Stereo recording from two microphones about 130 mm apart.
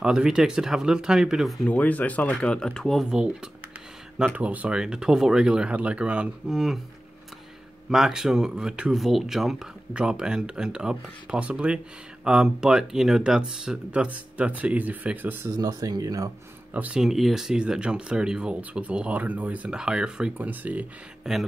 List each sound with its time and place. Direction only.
0.0 s speech: 5° right (ahead or behind)
1.7 s speech: 10° left (ahead or behind)
4.4 s speech: 10° right (ahead or behind)
7.9 s speech: centre (ahead or behind)
15.5 s speech: 30° right (ahead or behind)
16.7 s speech: 10° right (ahead or behind)